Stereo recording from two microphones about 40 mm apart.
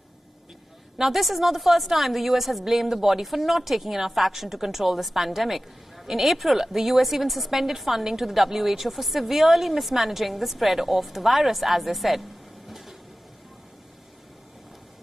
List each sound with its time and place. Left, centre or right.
0.9 s a woman's voice: centre